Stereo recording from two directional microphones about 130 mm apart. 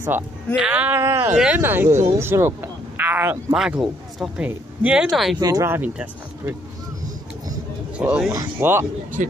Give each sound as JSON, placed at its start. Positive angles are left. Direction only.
{"t": 0.6, "sound": "speech", "side_deg": -10}
{"t": 3.5, "sound": "speech", "side_deg": -5}
{"t": 5.4, "sound": "speech", "side_deg": -30}
{"t": 5.7, "sound": "speech", "side_deg": -15}
{"t": 8.0, "sound": "speech", "side_deg": -10}
{"t": 8.3, "sound": "speech", "side_deg": -20}
{"t": 9.2, "sound": "speech", "side_deg": -75}